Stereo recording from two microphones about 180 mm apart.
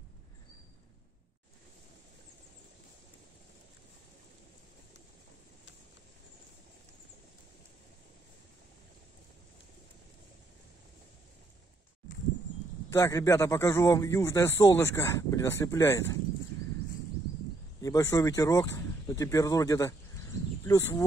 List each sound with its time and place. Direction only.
12.9 s a man's voice: 15° left (ahead or behind)
17.8 s a man's voice: 20° left (ahead or behind)